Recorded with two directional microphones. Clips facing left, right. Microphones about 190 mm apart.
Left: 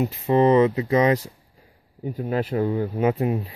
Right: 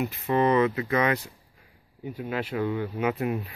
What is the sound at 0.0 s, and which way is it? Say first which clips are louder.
Speech: left 5 dB; 30° left (ahead or behind).